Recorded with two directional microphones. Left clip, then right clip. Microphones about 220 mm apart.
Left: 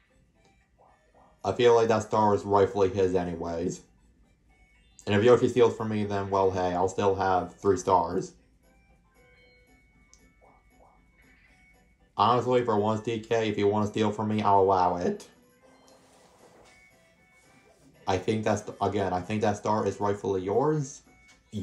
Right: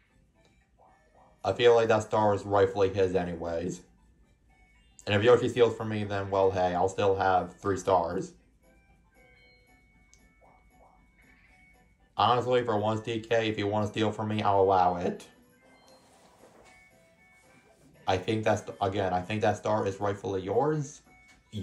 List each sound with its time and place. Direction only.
1.4 s speech: 25° left (ahead or behind)
5.0 s speech: 25° left (ahead or behind)
12.2 s speech: 25° left (ahead or behind)
18.0 s speech: 20° left (ahead or behind)